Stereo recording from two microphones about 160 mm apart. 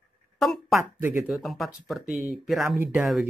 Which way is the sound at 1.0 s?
15° right (ahead or behind).